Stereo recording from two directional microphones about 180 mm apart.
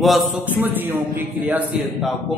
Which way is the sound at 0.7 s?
10° right (ahead or behind).